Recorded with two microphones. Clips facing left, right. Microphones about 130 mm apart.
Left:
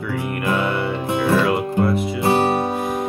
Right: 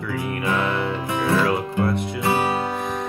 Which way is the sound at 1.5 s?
Centre (ahead or behind).